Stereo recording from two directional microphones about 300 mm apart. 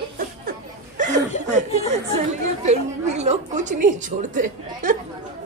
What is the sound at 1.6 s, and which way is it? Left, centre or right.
Chatter, right.